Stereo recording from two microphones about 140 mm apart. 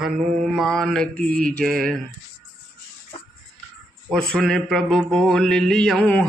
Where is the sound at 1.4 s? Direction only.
90° right.